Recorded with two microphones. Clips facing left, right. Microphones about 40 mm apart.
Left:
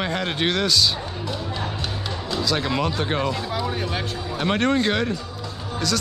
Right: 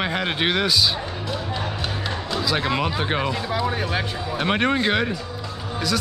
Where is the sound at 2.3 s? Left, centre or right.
Centre.